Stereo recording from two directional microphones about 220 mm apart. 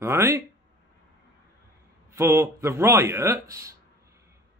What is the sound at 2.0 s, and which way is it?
Speech, 10° right (ahead or behind).